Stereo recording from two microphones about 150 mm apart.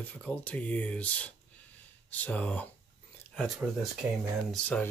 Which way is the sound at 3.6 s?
5° right (ahead or behind).